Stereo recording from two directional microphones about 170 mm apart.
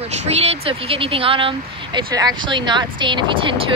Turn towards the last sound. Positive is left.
turn(degrees=-30)  # may be behind; listen again after turning